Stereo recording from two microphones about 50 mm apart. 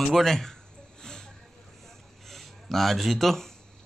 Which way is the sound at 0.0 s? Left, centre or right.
Centre.